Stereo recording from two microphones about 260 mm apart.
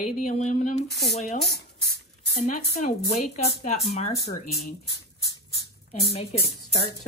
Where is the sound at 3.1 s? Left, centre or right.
Left.